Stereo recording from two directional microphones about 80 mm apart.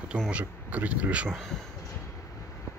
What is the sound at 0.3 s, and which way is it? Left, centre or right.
Speech, centre.